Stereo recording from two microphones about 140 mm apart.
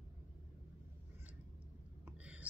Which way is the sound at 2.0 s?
10° right (ahead or behind).